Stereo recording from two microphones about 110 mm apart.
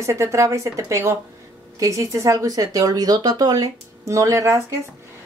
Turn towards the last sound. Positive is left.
turn(degrees=-30)  # may be behind; listen again after turning